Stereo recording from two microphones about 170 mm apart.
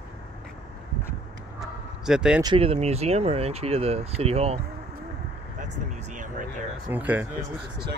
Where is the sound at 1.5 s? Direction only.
5° right (ahead or behind).